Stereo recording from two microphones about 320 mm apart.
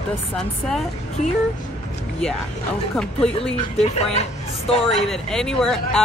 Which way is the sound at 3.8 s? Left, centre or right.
Centre.